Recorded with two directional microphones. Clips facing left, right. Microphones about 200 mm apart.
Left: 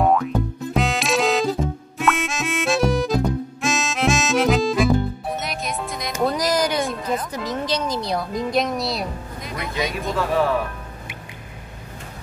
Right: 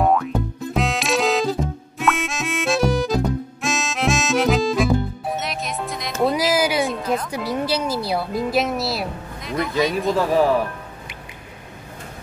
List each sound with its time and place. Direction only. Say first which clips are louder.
0.0 s music: even; centre (ahead or behind)
0.7 s harmonica: even; centre (ahead or behind)
3.6 s music: left 1 dB; centre (ahead or behind)
6.2 s a sound: right 2 dB; 5° right (ahead or behind)
7.2 s music: right 2 dB; 10° right (ahead or behind)